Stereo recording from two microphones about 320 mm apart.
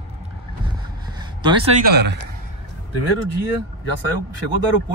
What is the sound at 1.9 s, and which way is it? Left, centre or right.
Speech, right.